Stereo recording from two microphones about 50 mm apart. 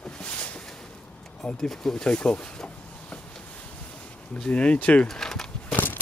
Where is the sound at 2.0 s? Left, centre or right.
Left.